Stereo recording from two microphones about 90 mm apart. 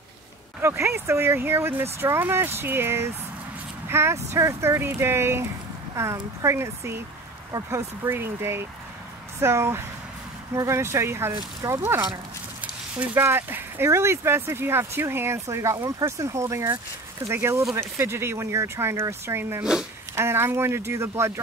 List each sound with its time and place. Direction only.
0.6 s speech: 30° right (ahead or behind)
13.1 s speech: 25° right (ahead or behind)
19.6 s speech: 10° right (ahead or behind)
20.2 s speech: 25° right (ahead or behind)